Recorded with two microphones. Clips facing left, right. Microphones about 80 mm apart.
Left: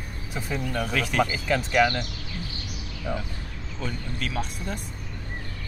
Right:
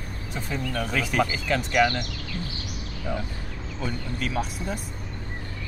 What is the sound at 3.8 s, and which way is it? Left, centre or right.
Speech, centre.